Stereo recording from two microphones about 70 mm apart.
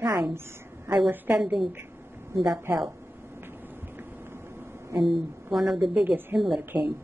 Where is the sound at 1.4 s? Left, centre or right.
Centre.